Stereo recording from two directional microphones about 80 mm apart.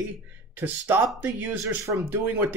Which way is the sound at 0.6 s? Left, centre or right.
Right.